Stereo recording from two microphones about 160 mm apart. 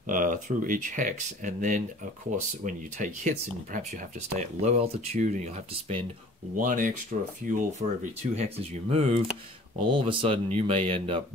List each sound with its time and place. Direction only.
0.0 s speech: 55° right (ahead or behind)
4.4 s speech: 45° right (ahead or behind)
8.5 s speech: 40° right (ahead or behind)